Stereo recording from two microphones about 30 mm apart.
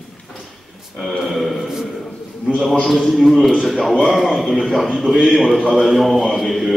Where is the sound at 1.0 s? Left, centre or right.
Centre.